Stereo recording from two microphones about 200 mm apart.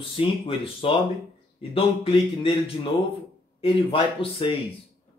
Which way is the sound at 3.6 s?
25° left (ahead or behind).